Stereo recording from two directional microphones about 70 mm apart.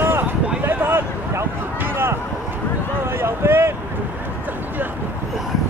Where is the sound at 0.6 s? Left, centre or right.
Right.